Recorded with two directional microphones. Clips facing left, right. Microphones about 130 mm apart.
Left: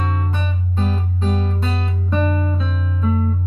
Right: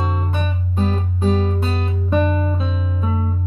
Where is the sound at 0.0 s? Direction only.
15° right (ahead or behind).